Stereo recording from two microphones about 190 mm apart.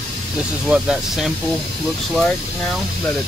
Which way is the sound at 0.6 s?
5° right (ahead or behind).